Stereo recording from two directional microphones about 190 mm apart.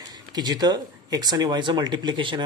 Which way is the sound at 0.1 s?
20° right (ahead or behind).